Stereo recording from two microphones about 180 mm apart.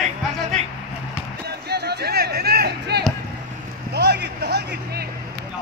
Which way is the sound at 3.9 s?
65° right (ahead or behind).